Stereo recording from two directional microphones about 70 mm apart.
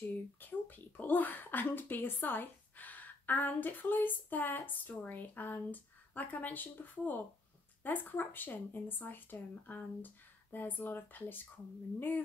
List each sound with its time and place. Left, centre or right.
0.1 s speech: left